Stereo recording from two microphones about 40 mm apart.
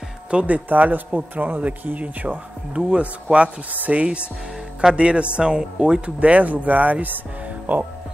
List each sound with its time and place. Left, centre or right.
0.3 s speech: right
0.7 s speech: right
3.7 s speech: right
4.0 s a man's voice: right
6.0 s speech: right